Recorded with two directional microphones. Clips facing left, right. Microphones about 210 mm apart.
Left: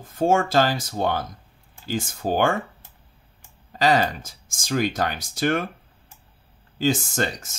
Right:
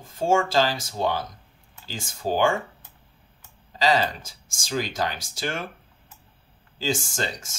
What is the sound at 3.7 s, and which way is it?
Speech, 55° left (ahead or behind).